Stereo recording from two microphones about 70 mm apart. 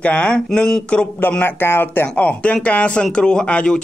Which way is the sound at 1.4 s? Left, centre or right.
Left.